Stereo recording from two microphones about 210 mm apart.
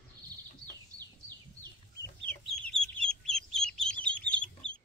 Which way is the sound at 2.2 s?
5° left (ahead or behind).